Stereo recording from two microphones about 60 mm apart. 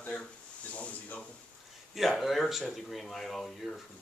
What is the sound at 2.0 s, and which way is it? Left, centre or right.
Speech, centre.